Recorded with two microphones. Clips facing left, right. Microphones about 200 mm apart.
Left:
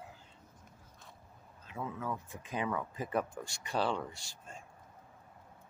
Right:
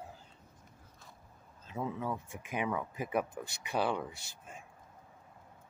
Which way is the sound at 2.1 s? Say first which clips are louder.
Right 1 dB; 15° right (ahead or behind).